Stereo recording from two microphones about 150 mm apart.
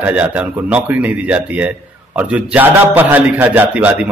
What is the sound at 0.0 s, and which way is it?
A man's voice, 10° right (ahead or behind).